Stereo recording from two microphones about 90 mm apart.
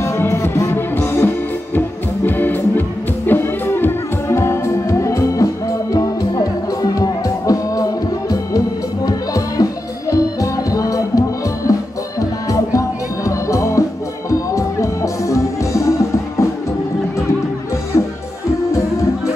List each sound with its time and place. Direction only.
0.0 s music: 30° left (ahead or behind)